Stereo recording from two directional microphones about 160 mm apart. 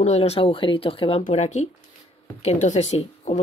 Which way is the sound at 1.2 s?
45° left (ahead or behind).